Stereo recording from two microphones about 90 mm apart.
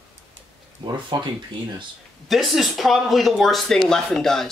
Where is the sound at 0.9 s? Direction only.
55° right (ahead or behind).